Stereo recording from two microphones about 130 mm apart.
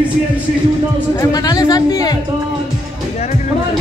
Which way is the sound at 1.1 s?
25° left (ahead or behind).